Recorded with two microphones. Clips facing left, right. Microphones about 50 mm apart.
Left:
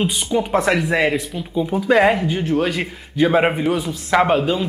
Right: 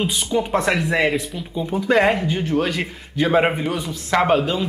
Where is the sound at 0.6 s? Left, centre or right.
Centre.